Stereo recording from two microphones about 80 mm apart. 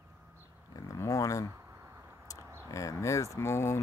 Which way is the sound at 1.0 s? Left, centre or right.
Left.